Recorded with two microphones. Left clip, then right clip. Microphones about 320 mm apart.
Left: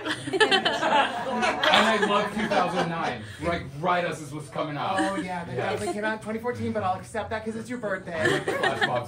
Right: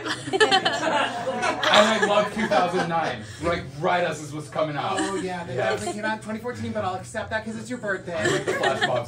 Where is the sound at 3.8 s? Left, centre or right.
Centre.